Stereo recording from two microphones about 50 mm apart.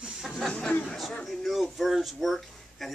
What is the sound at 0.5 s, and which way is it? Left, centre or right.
Chatter, centre.